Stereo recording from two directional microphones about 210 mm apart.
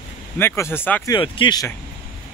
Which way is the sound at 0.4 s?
10° left (ahead or behind).